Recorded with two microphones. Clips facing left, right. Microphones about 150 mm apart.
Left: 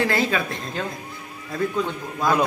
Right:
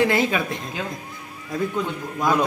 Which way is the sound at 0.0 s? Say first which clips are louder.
Right 2 dB; 15° right (ahead or behind).